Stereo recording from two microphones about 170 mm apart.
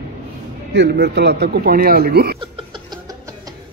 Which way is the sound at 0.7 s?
75° right (ahead or behind).